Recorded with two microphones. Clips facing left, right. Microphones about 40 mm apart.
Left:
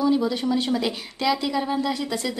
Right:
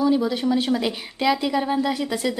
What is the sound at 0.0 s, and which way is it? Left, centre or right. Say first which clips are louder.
A woman's voice: right 1 dB; centre.